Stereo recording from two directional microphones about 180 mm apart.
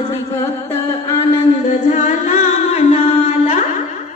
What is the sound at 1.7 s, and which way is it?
Music, 40° left (ahead or behind).